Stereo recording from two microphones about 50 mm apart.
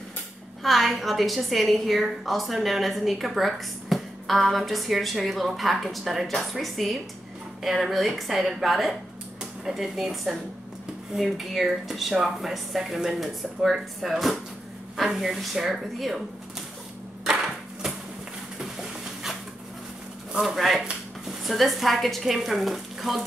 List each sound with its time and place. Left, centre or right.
0.7 s a woman's voice: centre
18.6 s a sound: centre
20.3 s a woman's voice: centre